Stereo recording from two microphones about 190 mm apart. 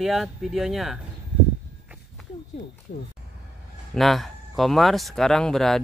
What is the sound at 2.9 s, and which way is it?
Speech, 60° left (ahead or behind).